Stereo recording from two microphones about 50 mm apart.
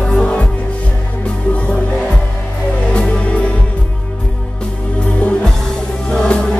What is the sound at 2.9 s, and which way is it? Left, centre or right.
Music, centre.